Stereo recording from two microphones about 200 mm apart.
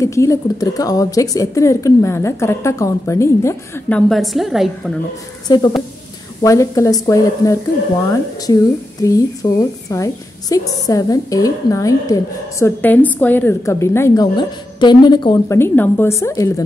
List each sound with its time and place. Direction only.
0.0 s a woman's voice: 15° left (ahead or behind)
4.1 s a woman's voice: centre (ahead or behind)
5.5 s a woman's voice: 20° left (ahead or behind)
9.0 s a woman's voice: 15° left (ahead or behind)